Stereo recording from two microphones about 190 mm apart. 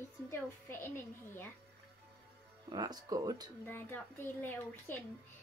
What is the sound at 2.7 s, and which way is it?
Speech, 20° right (ahead or behind).